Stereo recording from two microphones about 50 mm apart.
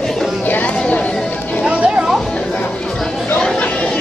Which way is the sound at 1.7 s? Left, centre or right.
Right.